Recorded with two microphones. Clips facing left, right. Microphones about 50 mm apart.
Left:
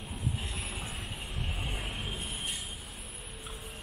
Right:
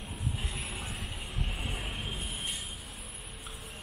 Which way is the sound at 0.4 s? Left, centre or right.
Centre.